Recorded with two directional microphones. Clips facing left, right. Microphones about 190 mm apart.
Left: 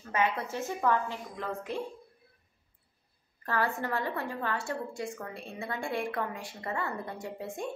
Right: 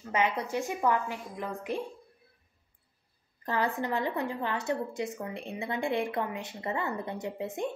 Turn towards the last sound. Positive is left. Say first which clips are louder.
# right 3 dB
turn(degrees=-20)  # may be behind; listen again after turning